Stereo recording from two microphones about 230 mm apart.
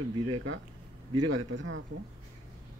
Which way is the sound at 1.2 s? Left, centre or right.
Right.